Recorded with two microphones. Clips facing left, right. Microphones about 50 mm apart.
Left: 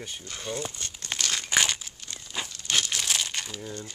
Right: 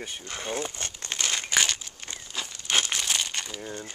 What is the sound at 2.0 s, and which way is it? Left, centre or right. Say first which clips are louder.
Crumpling: right 3 dB; right.